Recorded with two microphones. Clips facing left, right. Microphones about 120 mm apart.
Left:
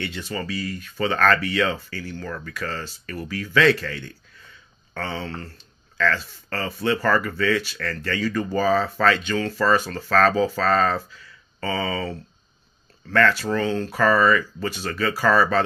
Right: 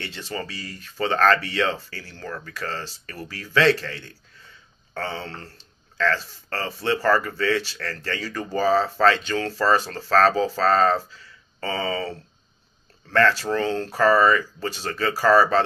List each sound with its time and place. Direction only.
0.0 s speech: 30° right (ahead or behind)
13.1 s speech: 35° right (ahead or behind)